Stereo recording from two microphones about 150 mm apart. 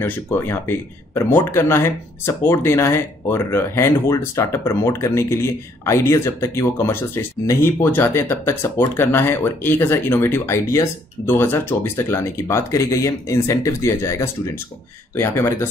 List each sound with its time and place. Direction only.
0.0 s speech: 15° left (ahead or behind)